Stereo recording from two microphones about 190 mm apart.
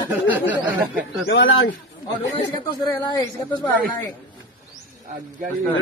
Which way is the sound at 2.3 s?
25° left (ahead or behind).